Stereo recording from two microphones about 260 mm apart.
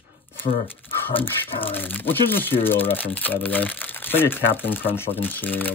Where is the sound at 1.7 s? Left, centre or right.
Centre.